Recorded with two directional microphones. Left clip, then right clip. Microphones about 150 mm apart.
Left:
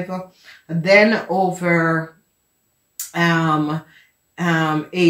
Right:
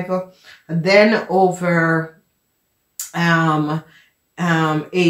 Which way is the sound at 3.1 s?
35° right (ahead or behind).